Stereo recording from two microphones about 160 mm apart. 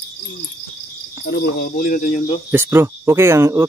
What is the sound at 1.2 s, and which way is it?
Cricket, 80° left.